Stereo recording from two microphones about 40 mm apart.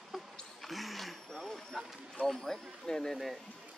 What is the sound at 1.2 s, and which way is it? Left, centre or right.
Vehicle, centre.